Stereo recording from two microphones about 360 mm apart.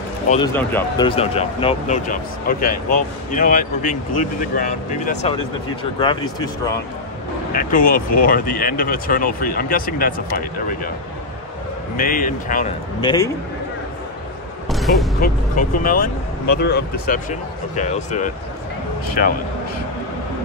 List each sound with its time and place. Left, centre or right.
0.3 s speech: centre
7.5 s speech: left
12.0 s speech: left
14.7 s a sound: centre
15.1 s speech: left